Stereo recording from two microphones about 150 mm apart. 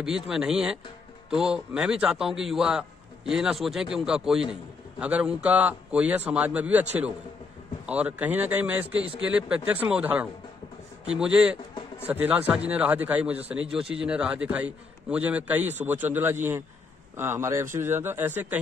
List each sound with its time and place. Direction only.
0.0 s a man's voice: 5° right (ahead or behind)
7.8 s a man's voice: 10° right (ahead or behind)